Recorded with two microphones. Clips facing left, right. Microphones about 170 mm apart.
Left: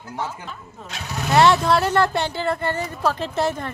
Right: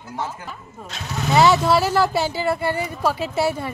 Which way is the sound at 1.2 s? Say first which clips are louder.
Even; centre (ahead or behind).